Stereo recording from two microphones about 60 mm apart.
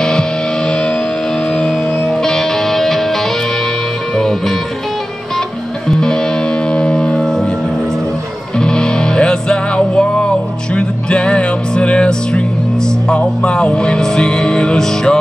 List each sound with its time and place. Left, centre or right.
0.0 s music: centre
5.9 s music: centre
8.5 s music: centre